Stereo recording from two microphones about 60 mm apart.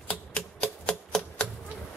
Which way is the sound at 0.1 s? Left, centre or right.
Centre.